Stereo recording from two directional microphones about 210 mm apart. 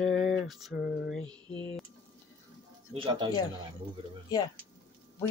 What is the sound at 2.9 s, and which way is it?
Speech, 25° right (ahead or behind).